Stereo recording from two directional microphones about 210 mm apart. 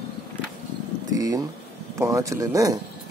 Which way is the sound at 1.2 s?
15° right (ahead or behind).